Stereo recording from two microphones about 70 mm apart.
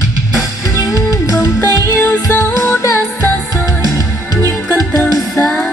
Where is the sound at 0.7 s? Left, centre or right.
Left.